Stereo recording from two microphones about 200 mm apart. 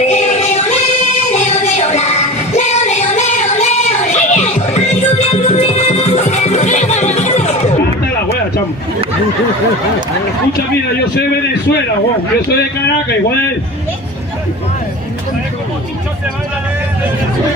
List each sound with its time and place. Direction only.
0.1 s music: 35° left (ahead or behind)
1.3 s a sound: 35° left (ahead or behind)
2.5 s music: 35° left (ahead or behind)
12.4 s speech: 55° left (ahead or behind)